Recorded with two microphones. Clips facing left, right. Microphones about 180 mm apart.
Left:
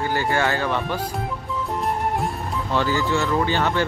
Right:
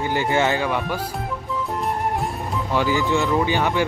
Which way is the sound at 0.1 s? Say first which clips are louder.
Right 3 dB; 20° right (ahead or behind).